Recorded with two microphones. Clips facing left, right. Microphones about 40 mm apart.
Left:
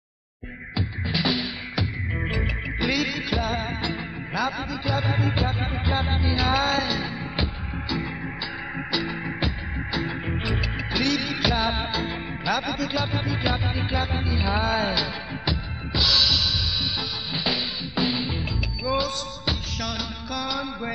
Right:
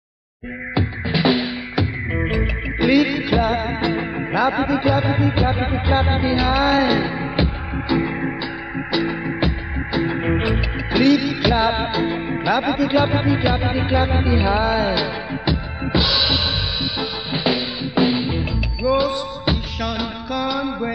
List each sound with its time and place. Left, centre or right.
0.7 s music: right
4.9 s music: centre
12.4 s music: centre
15.8 s drum kit: right
17.9 s music: centre